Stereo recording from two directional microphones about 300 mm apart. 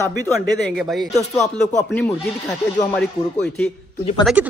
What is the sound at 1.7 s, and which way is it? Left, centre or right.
Speech, left.